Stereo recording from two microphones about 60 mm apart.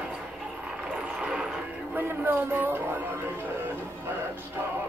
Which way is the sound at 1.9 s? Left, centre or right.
Right.